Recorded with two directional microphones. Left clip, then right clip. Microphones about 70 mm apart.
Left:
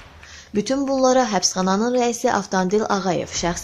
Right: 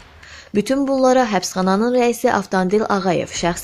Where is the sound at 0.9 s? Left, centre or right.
Right.